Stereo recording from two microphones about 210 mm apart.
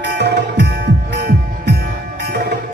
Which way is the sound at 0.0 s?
50° right (ahead or behind).